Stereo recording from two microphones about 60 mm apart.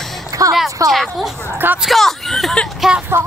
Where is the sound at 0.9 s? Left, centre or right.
Centre.